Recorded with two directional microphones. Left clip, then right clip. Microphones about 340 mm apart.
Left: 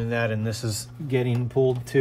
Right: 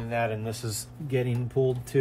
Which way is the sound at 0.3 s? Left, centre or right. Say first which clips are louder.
Left 3 dB; left.